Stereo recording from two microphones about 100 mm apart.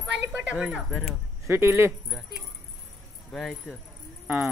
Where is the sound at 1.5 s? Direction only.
25° right (ahead or behind).